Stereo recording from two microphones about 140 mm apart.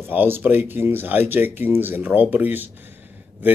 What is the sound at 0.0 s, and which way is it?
A man's voice, 15° right (ahead or behind).